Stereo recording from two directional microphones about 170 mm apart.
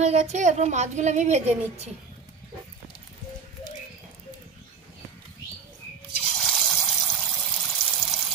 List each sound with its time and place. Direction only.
0.0 s speech: 40° right (ahead or behind)
6.4 s water: centre (ahead or behind)